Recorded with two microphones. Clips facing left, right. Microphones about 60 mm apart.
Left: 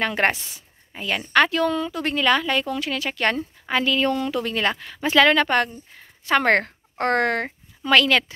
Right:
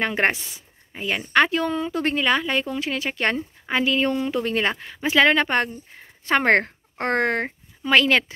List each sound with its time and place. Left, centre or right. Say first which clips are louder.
0.0 s speech: even; right
2.1 s speech: left 4 dB; centre
7.4 s a sound: left 2 dB; centre
8.0 s speech: even; right